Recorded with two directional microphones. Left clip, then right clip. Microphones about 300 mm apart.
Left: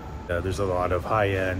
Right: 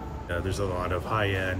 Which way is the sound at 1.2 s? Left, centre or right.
Left.